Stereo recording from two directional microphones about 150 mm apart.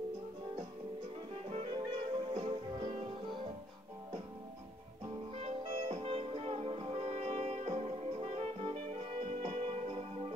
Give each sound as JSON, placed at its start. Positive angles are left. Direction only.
{"t": 1.5, "sound": "music", "side_deg": -45}
{"t": 5.4, "sound": "music", "side_deg": -45}